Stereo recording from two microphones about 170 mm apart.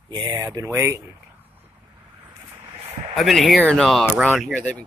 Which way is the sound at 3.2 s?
Centre (ahead or behind).